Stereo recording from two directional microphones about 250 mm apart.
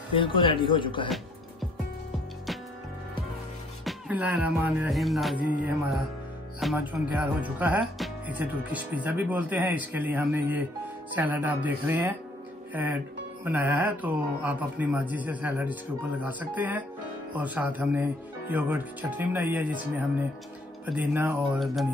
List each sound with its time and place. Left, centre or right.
0.1 s speech: centre
1.0 s music: centre
3.8 s music: centre
6.6 s speech: centre
13.4 s speech: centre